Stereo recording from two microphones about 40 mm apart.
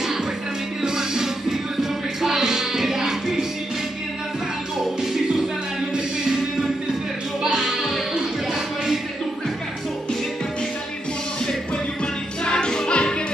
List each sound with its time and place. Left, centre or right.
0.8 s music: centre
7.4 s a sound: centre
12.0 s music: left